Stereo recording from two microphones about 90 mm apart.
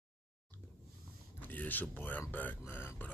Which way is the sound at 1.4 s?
20° left (ahead or behind).